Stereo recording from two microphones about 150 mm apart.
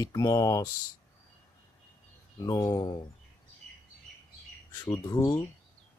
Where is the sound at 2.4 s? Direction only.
25° left (ahead or behind).